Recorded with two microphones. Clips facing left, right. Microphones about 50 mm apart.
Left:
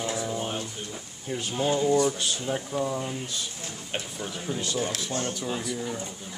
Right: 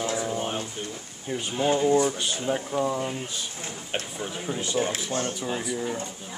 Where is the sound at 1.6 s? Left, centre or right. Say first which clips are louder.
Right 2 dB; right.